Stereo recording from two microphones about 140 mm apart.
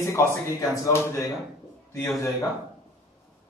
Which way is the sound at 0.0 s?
20° left (ahead or behind).